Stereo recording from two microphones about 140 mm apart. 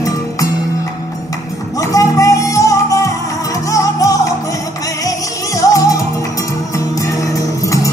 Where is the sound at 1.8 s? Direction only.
25° left (ahead or behind).